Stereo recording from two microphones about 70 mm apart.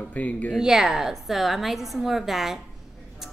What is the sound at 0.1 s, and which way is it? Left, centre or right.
Speech, left.